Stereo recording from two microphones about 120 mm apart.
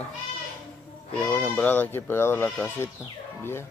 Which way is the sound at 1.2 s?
10° left (ahead or behind).